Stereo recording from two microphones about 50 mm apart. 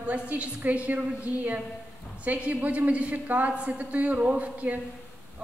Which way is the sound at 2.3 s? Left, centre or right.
Right.